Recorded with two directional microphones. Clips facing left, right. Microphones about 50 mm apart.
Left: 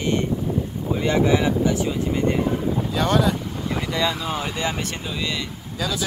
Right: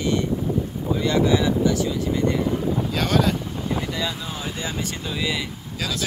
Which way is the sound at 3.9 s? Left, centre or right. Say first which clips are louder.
Left 5 dB; left.